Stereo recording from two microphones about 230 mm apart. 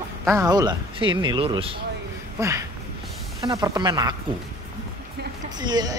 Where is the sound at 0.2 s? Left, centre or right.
Centre.